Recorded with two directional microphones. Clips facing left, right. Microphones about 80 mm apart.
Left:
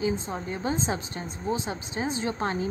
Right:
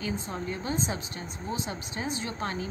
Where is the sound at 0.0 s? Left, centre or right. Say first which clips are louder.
Left 4 dB; left.